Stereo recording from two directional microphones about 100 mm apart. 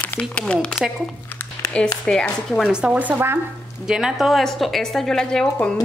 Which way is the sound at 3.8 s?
5° right (ahead or behind).